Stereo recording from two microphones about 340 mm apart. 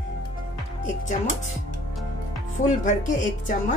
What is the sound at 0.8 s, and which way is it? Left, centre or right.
Speech, left.